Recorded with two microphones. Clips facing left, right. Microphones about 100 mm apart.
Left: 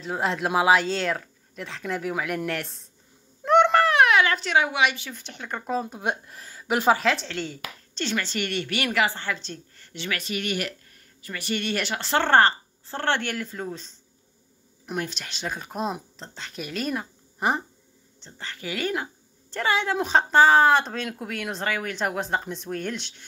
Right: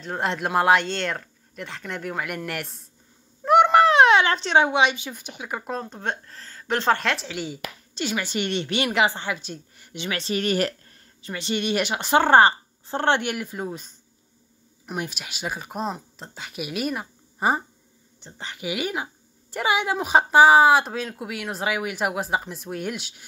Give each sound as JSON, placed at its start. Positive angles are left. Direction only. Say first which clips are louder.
{"t": 0.0, "sound": "speech", "louder": "even", "side_deg": 0}
{"t": 3.4, "sound": "a sound", "louder": "right 2 dB", "side_deg": -5}
{"t": 3.8, "sound": "speech", "louder": "right 3 dB", "side_deg": -25}
{"t": 5.7, "sound": "speech", "louder": "left 4 dB", "side_deg": 5}
{"t": 10.2, "sound": "speech", "louder": "right 8 dB", "side_deg": -35}
{"t": 11.2, "sound": "speech", "louder": "right 3 dB", "side_deg": -20}
{"t": 15.0, "sound": "a woman's voice", "louder": "even", "side_deg": -10}
{"t": 18.2, "sound": "speech", "louder": "right 3 dB", "side_deg": -15}